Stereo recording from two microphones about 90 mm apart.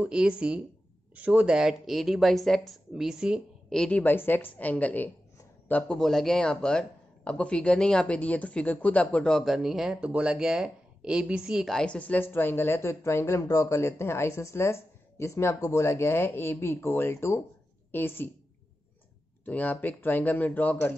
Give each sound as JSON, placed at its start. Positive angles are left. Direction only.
{"t": 0.0, "sound": "speech", "side_deg": -10}
{"t": 3.7, "sound": "speech", "side_deg": 10}
{"t": 4.0, "sound": "speech", "side_deg": 20}
{"t": 5.9, "sound": "speech", "side_deg": 5}
{"t": 9.4, "sound": "speech", "side_deg": -5}
{"t": 11.6, "sound": "speech", "side_deg": 10}
{"t": 19.4, "sound": "speech", "side_deg": 20}